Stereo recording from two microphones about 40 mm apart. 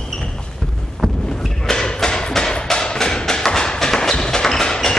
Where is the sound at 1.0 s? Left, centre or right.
Centre.